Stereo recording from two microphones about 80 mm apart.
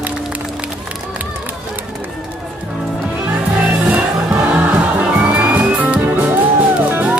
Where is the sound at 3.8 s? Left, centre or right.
Centre.